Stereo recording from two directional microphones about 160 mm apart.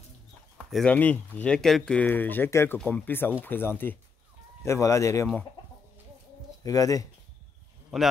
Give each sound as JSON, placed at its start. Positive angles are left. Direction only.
{"t": 0.7, "sound": "speech", "side_deg": 0}
{"t": 0.9, "sound": "speech", "side_deg": 10}
{"t": 6.6, "sound": "speech", "side_deg": 20}
{"t": 7.9, "sound": "a man's voice", "side_deg": 0}